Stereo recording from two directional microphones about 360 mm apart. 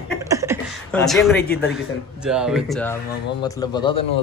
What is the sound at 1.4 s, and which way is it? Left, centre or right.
Speech, left.